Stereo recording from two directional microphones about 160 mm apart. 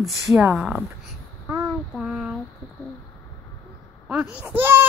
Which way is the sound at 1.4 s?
15° right (ahead or behind).